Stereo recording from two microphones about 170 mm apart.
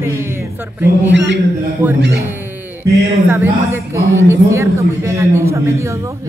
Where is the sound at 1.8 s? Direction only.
10° right (ahead or behind).